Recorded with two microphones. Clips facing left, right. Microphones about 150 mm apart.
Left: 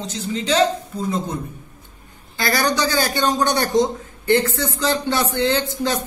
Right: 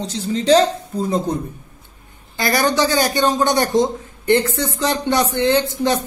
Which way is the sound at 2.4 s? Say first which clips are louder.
Right 3 dB; 20° right (ahead or behind).